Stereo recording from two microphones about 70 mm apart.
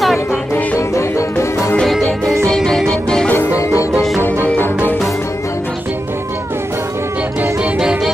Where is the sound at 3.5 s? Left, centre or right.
Left.